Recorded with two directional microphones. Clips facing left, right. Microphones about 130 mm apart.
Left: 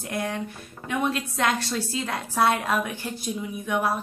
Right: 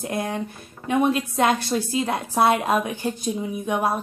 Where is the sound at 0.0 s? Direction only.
20° right (ahead or behind).